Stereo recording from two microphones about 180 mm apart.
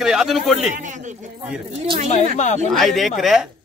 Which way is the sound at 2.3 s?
40° left (ahead or behind).